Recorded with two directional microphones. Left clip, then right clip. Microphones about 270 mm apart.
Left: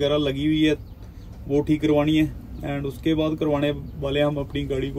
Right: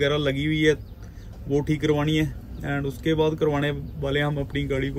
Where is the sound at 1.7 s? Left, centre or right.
Left.